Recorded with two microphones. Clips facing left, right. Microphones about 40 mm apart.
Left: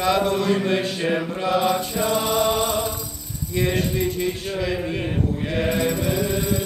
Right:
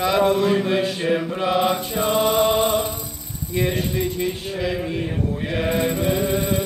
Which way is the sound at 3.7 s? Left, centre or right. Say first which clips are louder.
Left 3 dB; centre.